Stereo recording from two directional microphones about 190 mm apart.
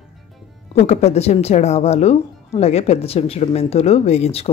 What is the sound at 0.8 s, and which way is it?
Speech, 35° left (ahead or behind).